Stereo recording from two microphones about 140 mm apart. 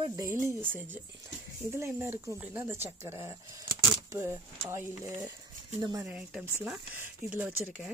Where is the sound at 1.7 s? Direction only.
15° right (ahead or behind).